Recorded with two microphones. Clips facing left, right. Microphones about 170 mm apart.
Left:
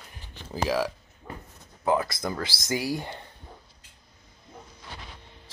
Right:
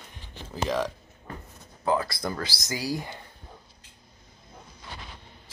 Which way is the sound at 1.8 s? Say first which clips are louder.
Left 1 dB; 20° left (ahead or behind).